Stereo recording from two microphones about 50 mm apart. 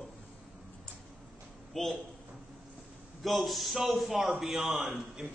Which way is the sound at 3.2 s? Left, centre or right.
Centre.